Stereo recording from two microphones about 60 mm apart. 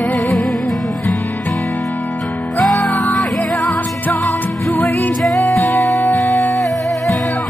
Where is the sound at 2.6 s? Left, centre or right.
Centre.